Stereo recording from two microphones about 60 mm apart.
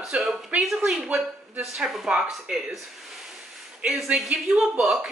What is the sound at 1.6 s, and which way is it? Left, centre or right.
A man's voice, centre.